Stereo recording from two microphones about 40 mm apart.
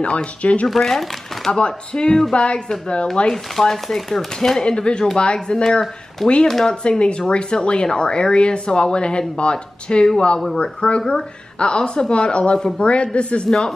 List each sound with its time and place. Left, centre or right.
0.0 s speech: left
0.7 s speech: centre
1.5 s speech: left
3.3 s speech: centre
4.6 s speech: left
11.0 s speech: centre
12.5 s speech: centre
12.8 s speech: left
13.5 s speech: centre